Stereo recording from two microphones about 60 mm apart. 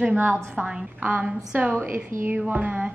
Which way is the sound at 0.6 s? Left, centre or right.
Right.